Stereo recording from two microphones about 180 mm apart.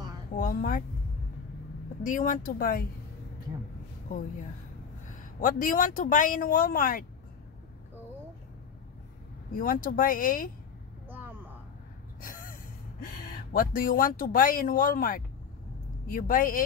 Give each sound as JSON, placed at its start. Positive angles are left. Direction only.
{"t": 0.4, "sound": "speech", "side_deg": 50}
{"t": 2.0, "sound": "speech", "side_deg": 45}
{"t": 5.4, "sound": "speech", "side_deg": 50}
{"t": 9.5, "sound": "speech", "side_deg": 50}
{"t": 11.1, "sound": "a sound", "side_deg": -10}
{"t": 12.2, "sound": "gasp", "side_deg": 50}
{"t": 13.5, "sound": "speech", "side_deg": 55}